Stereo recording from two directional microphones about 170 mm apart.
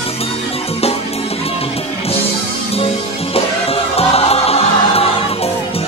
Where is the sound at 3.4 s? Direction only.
35° left (ahead or behind).